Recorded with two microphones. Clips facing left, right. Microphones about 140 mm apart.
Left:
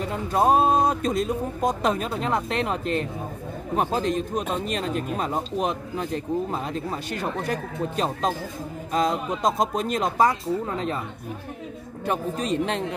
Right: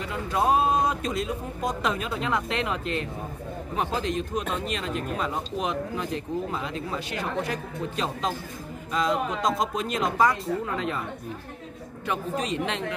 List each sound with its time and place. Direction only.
0.0 s speech: 40° left (ahead or behind)
12.1 s speech: 45° left (ahead or behind)